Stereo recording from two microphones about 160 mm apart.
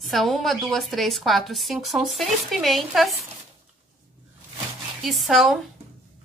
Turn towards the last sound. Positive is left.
turn(degrees=0)  # may be behind; listen again after turning